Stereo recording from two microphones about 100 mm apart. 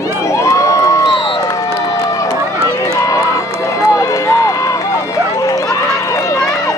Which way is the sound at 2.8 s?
35° left (ahead or behind).